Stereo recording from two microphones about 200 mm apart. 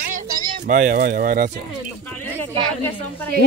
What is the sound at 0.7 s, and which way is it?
Speech, 40° right (ahead or behind).